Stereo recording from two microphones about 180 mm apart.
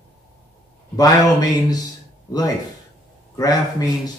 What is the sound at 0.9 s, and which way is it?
Speech, 20° left (ahead or behind).